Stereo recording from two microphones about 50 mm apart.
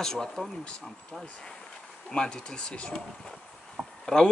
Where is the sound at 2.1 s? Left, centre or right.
Centre.